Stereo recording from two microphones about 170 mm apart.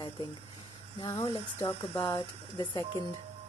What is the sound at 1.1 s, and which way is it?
Speech, 35° left (ahead or behind).